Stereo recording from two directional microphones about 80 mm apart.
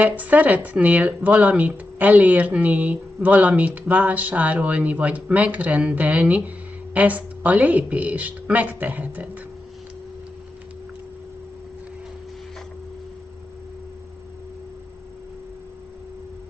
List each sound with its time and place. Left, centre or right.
0.0 s speech: centre